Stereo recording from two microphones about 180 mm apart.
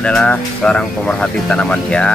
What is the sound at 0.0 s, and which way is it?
Speech, 5° left (ahead or behind).